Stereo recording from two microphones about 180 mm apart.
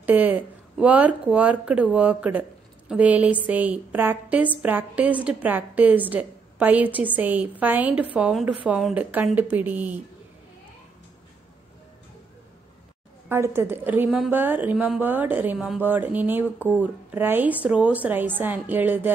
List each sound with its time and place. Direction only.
0.0 s a woman's voice: 10° right (ahead or behind)
13.3 s a woman's voice: 15° right (ahead or behind)